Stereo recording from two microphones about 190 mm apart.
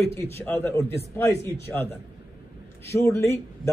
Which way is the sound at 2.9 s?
15° left (ahead or behind).